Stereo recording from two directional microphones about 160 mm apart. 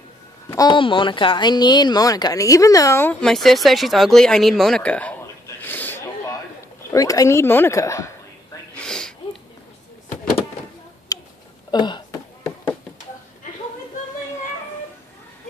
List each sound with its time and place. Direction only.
0.5 s a woman's voice: 25° left (ahead or behind); by 5.1 s 10° left (ahead or behind)
5.2 s snort: 10° left (ahead or behind)
6.9 s a woman's voice: 20° left (ahead or behind)
8.7 s a sound: 5° left (ahead or behind)
11.1 s a sound: 20° left (ahead or behind)
11.7 s speech: 30° left (ahead or behind)